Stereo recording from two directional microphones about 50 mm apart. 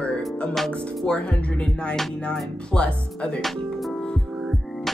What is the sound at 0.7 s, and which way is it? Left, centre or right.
Music, left.